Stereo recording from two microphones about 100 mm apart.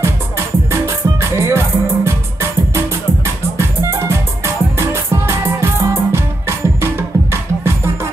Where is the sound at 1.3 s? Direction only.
25° right (ahead or behind).